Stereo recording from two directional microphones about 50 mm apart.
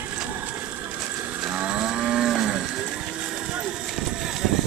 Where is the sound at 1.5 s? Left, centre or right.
Right.